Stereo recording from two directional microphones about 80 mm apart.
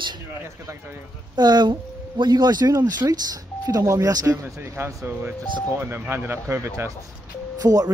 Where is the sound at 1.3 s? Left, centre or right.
Right.